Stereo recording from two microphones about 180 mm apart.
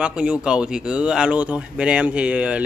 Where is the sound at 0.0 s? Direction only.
5° right (ahead or behind).